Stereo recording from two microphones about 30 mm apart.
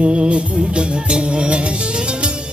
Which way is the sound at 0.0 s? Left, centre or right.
Right.